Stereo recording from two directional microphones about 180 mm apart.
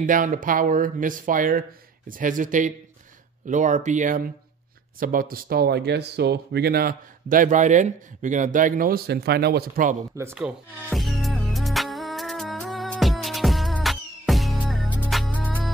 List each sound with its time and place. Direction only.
0.0 s speech: 50° right (ahead or behind)
10.1 s music: 10° right (ahead or behind)